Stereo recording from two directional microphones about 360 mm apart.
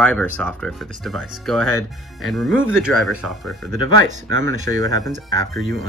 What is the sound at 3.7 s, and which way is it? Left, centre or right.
Speech, right.